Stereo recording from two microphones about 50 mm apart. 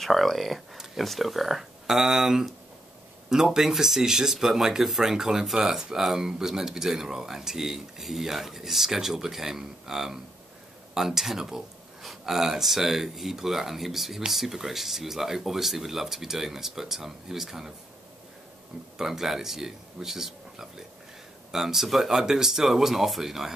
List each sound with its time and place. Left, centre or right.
0.0 s speech: centre
18.9 s speech: centre